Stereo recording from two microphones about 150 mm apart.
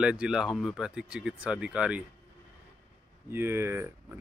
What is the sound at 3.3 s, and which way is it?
Speech, 15° right (ahead or behind).